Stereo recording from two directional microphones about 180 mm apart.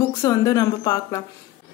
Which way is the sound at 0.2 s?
20° left (ahead or behind).